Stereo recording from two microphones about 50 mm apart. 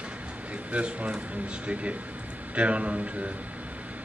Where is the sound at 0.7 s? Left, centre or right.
Right.